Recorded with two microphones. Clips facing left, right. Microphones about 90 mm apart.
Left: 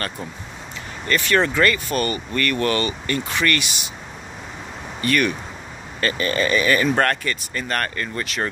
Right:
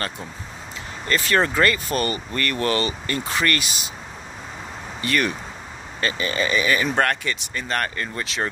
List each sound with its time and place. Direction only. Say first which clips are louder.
1.0 s speech: left 1 dB; 30° right (ahead or behind)
5.0 s speech: left 3 dB; 25° right (ahead or behind)